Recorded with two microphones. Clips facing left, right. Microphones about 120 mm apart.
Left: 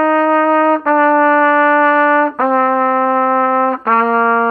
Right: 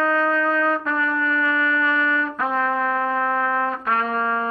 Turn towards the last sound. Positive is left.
turn(degrees=55)  # may be behind; listen again after turning